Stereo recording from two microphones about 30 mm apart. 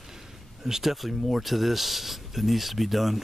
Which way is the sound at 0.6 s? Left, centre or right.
Centre.